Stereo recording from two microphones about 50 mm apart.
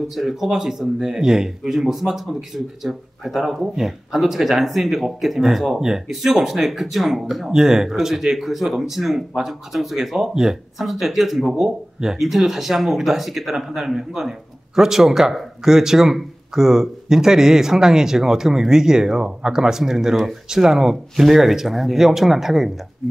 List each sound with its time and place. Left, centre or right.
0.1 s speech: centre